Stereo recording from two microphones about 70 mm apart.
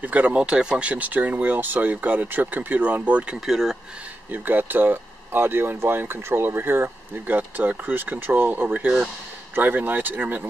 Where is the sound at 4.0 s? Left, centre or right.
Right.